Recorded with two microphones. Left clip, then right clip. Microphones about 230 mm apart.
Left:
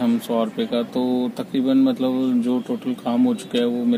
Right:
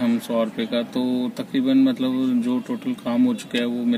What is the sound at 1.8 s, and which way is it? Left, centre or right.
Speech, left.